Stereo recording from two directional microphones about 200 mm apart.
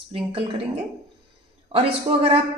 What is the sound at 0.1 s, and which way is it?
Speech, 30° right (ahead or behind).